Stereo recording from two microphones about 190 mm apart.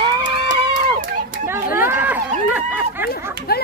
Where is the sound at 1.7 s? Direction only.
10° right (ahead or behind).